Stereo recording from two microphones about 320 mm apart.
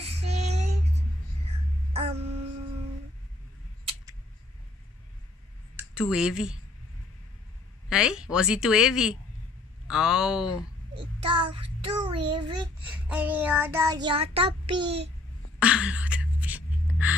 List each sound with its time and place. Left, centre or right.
0.3 s child singing: right
2.0 s music: centre
5.9 s a woman's voice: centre
7.9 s a woman's voice: centre
11.0 s child singing: centre
15.6 s a sound: centre